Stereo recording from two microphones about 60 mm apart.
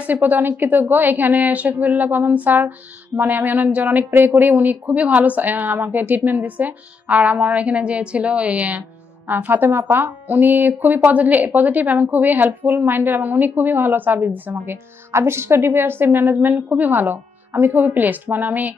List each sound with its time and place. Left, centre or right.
0.0 s a woman's voice: right
4.1 s a woman's voice: right
14.7 s speech: right